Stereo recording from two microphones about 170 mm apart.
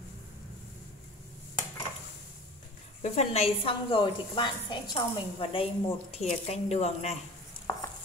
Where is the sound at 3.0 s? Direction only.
40° left (ahead or behind).